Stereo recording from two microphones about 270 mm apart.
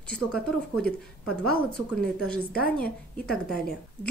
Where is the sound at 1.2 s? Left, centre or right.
Left.